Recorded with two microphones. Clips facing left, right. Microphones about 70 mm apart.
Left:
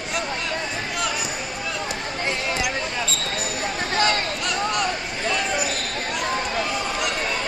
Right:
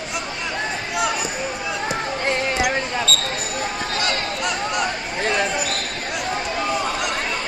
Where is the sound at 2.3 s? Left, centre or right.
Right.